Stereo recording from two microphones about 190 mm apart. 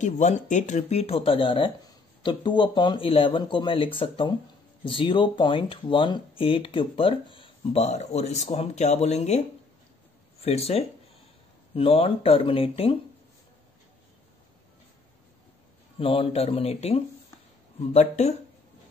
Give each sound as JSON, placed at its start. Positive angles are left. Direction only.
{"t": 0.0, "sound": "speech", "side_deg": 40}
{"t": 10.4, "sound": "speech", "side_deg": 30}
{"t": 16.0, "sound": "speech", "side_deg": 30}